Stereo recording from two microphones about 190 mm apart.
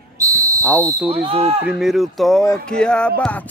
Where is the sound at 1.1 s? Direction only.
30° right (ahead or behind).